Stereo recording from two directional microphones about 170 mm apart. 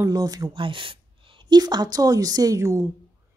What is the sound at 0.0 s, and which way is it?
A woman's voice, 20° right (ahead or behind).